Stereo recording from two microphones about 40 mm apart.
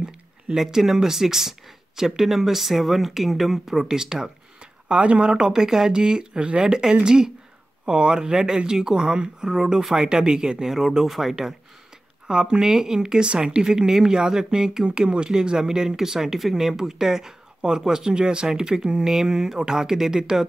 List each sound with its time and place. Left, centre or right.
0.6 s speech: centre
4.8 s speech: right
5.4 s speech: centre
12.3 s speech: right